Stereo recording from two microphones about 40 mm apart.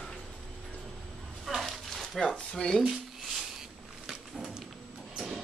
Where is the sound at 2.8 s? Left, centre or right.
Centre.